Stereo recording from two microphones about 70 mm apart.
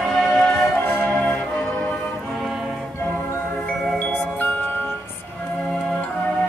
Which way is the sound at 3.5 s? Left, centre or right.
Centre.